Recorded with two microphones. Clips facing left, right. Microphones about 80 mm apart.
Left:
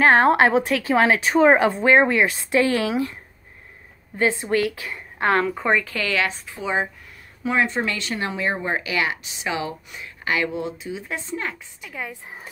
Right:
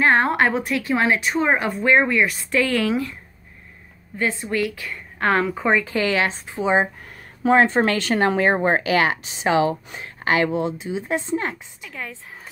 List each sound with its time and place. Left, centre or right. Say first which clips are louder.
0.2 s speech: left 3 dB; left
0.8 s speech: left 2 dB; left
1.7 s speech: left 1 dB; left
4.2 s speech: left 2 dB; left
5.2 s a woman's voice: even; centre
5.9 s a woman's voice: right 3 dB; right
7.1 s a sound: right 8 dB; right
7.8 s a woman's voice: right 7 dB; right
11.8 s speech: left 2 dB; centre